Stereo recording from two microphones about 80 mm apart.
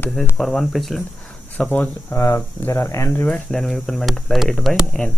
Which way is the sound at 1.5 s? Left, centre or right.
Centre.